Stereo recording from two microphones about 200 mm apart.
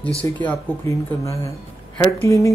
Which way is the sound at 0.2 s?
10° left (ahead or behind).